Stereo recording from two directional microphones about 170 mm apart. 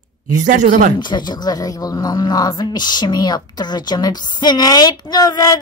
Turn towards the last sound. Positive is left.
turn(degrees=20)  # may be behind; listen again after turning